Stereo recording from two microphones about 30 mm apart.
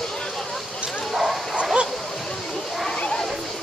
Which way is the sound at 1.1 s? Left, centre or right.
Centre.